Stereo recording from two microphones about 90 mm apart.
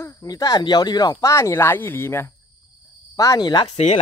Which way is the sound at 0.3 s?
45° left (ahead or behind).